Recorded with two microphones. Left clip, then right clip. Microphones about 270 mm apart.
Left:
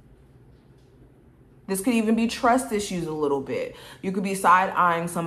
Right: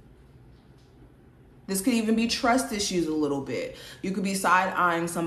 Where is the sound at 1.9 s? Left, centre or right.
Left.